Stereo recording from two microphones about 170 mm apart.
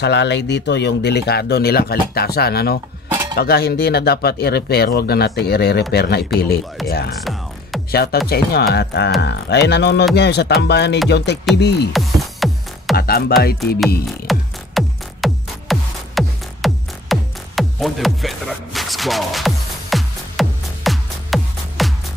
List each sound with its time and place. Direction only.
0.0 s speech: 85° left; by 2.8 s 65° left (ahead or behind)
3.1 s cutlery: 20° right (ahead or behind)
3.3 s speech: 70° left (ahead or behind)
7.9 s speech: 65° left (ahead or behind)
11.9 s music: centre (ahead or behind)
12.9 s speech: 65° left (ahead or behind)
14.2 s music: centre (ahead or behind)